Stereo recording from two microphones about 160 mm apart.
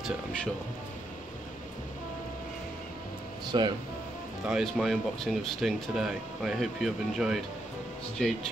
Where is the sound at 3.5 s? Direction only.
30° right (ahead or behind).